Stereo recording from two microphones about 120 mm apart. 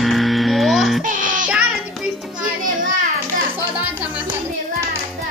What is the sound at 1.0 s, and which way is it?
Music, 90° right.